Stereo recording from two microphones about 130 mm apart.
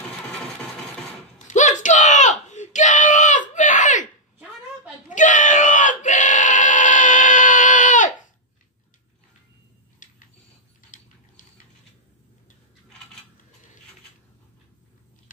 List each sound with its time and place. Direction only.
1.5 s screaming: 70° left (ahead or behind)
5.1 s crowd: 75° left (ahead or behind)
10.0 s a sound: 90° left